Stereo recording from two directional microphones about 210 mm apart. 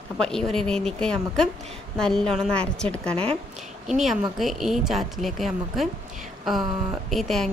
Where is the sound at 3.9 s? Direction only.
Centre (ahead or behind).